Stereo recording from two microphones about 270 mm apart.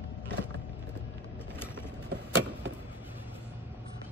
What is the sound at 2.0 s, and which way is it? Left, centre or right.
Vehicle, right.